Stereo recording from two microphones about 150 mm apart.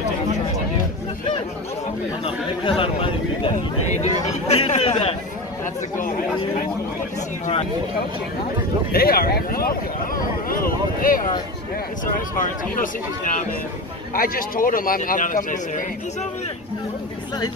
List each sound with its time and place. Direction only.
2.2 s a man's voice: 35° left (ahead or behind)
3.8 s chatter: 50° left (ahead or behind)
5.9 s speech: 60° left (ahead or behind)
8.9 s a man's voice: 85° left
10.5 s a sound: 70° left (ahead or behind)
12.4 s speech: 60° left (ahead or behind)
14.1 s a man's voice: 70° left (ahead or behind); by 16.3 s 55° left (ahead or behind)